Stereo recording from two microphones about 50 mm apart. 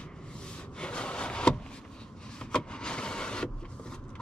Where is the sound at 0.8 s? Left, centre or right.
Left.